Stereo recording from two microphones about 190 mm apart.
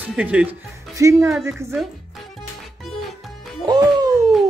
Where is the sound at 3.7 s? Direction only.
20° right (ahead or behind).